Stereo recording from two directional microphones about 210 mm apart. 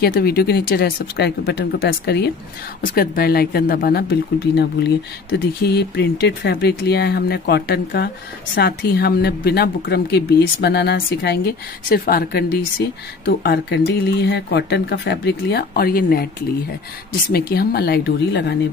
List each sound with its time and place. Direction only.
0.0 s speech: 45° left (ahead or behind)